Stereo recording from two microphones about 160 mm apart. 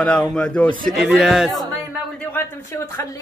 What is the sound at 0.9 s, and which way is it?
Speech, 5° right (ahead or behind).